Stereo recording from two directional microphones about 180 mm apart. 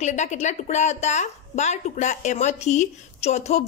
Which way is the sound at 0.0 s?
40° left (ahead or behind).